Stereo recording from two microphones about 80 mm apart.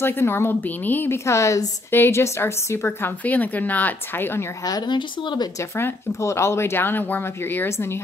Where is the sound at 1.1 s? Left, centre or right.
Left.